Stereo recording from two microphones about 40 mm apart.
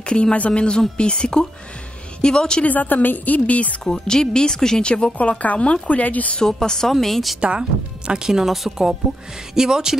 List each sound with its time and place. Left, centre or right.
0.0 s a woman's voice: left
2.6 s a woman's voice: left
3.3 s speech: left
3.8 s speech: centre
5.4 s speech: left
6.3 s speech: centre
6.9 s a woman's voice: centre
7.3 s a woman's voice: right
8.1 s speech: centre